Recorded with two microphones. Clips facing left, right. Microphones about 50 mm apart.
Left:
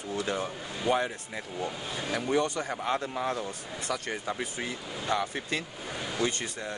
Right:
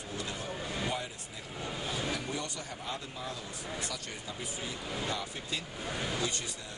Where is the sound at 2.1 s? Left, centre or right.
Left.